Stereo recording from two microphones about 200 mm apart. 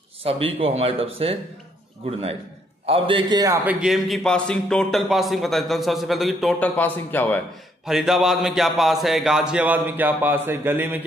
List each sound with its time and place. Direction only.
0.2 s a man's voice: 30° right (ahead or behind)
2.9 s a man's voice: 25° right (ahead or behind)
3.6 s speech: centre (ahead or behind)
7.8 s speech: centre (ahead or behind)